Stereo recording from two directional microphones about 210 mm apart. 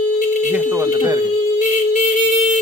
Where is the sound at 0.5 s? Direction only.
10° right (ahead or behind).